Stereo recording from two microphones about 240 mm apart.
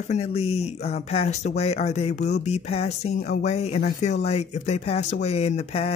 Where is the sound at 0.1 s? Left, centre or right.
Left.